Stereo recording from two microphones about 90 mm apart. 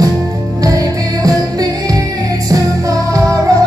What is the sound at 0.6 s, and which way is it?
Music, 40° right (ahead or behind).